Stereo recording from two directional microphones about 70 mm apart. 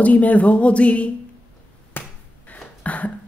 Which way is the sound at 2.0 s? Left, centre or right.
Left.